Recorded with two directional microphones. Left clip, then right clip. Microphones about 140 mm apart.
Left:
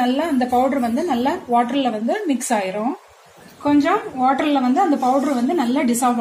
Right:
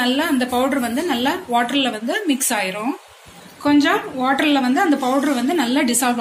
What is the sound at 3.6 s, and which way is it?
A woman's voice, 15° left (ahead or behind).